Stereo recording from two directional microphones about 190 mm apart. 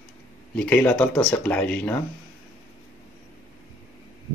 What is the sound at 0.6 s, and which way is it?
Speech, 5° left (ahead or behind).